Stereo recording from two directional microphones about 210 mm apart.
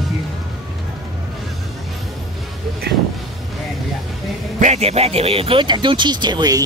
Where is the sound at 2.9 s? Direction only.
50° right (ahead or behind).